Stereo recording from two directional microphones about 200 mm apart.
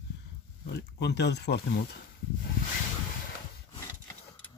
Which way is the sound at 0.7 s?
55° left (ahead or behind).